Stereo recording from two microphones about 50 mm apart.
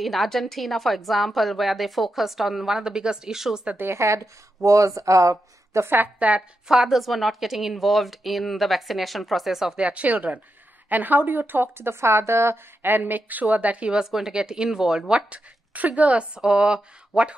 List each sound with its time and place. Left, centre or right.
0.0 s a woman's voice: centre
3.9 s a woman's voice: right
4.7 s a woman's voice: right
6.1 s speech: right
6.7 s a woman's voice: centre
9.8 s a woman's voice: right
12.8 s a woman's voice: right
14.1 s speech: centre; by 16.3 s right
16.3 s speech: centre